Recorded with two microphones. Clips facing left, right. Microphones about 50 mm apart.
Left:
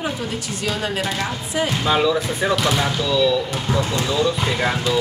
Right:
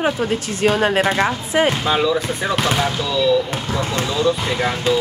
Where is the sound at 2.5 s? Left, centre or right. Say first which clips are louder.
Right 2 dB; right.